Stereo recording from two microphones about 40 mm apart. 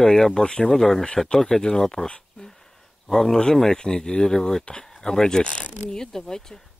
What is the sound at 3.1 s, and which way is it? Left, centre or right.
Speech, centre.